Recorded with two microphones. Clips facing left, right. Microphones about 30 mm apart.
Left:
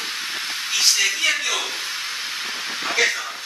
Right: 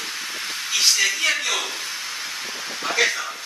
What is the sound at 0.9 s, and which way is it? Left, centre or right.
Speech, centre.